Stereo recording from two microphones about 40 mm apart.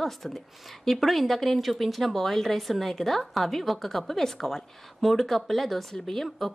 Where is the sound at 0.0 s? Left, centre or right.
Centre.